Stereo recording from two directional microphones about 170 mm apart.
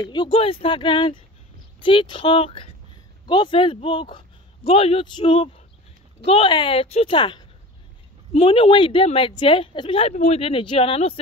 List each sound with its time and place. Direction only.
0.0 s a woman's voice: 25° left (ahead or behind)